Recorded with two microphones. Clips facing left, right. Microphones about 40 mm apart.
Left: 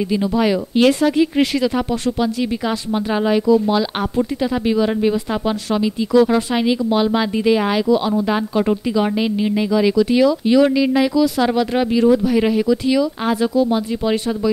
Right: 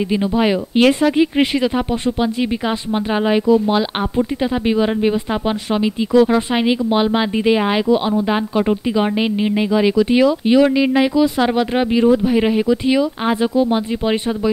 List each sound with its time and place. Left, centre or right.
0.1 s speech: right